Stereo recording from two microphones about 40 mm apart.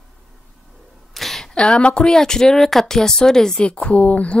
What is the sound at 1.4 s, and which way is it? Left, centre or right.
Speech, left.